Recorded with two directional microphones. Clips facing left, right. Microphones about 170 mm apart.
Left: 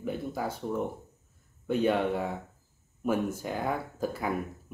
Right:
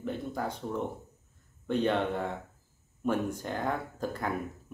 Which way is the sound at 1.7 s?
5° left (ahead or behind).